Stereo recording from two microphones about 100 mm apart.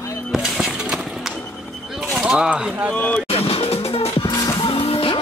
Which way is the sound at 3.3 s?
80° left.